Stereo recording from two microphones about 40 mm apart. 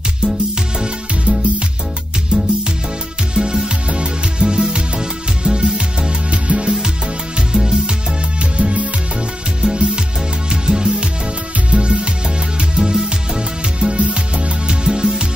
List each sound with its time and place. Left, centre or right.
0.7 s music: centre
8.5 s music: right